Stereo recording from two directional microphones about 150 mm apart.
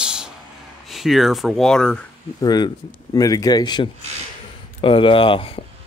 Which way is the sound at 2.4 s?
30° left (ahead or behind).